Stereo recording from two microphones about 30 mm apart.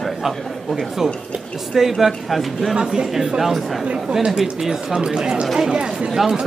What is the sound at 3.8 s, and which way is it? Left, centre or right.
Speech, right.